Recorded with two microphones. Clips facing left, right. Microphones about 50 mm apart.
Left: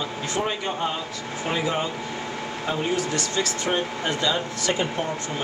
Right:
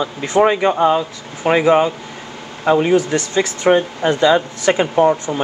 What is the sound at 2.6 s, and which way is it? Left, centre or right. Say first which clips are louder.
Speech: right 12 dB; right.